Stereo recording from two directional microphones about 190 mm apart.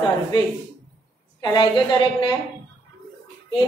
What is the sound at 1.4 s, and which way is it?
Speech, 20° left (ahead or behind).